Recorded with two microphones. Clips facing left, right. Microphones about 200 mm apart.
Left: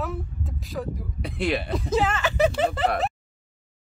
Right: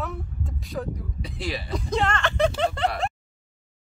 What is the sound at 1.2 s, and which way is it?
Speech, 60° left (ahead or behind).